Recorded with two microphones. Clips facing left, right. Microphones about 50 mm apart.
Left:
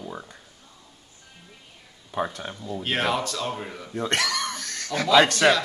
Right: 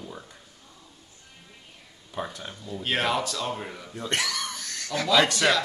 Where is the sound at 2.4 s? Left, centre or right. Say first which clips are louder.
Left 4 dB; left.